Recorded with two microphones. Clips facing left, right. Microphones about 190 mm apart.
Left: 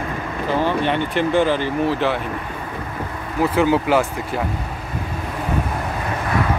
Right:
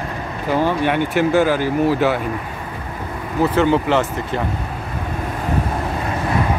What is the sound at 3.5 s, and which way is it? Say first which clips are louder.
Speech: even; 5° left (ahead or behind).